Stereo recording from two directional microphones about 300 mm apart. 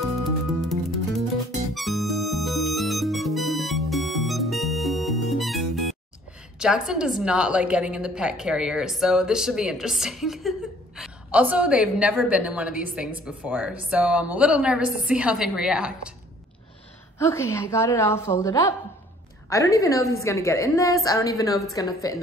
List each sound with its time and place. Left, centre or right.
0.2 s music: centre
6.6 s a woman's voice: centre
17.2 s a woman's voice: centre